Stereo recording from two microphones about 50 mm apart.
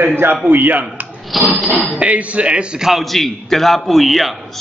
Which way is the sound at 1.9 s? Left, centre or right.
Right.